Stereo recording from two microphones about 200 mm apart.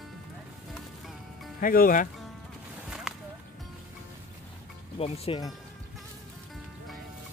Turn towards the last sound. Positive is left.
turn(degrees=30)  # may be behind; listen again after turning